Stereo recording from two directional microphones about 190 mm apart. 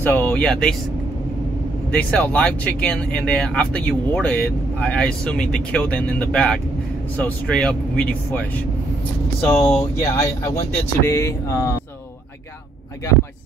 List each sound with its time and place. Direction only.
0.0 s speech: 10° left (ahead or behind)
1.9 s speech: 5° left (ahead or behind)